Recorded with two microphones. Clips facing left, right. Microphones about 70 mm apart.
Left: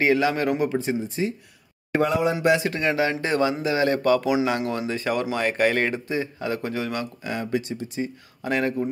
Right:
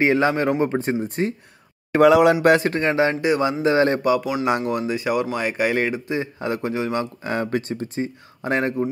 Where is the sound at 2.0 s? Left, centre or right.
Right.